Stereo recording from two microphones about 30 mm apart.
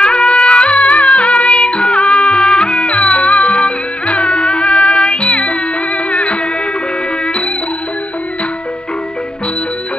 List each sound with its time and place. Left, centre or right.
0.0 s music: left